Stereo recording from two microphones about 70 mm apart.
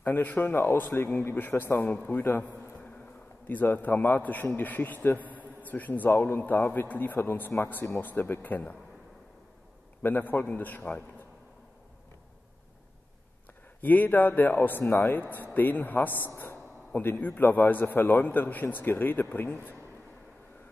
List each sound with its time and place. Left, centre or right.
0.0 s a man's voice: left
5.2 s a sound: right
5.6 s a man's voice: left
10.0 s a man's voice: left
13.7 s a man's voice: left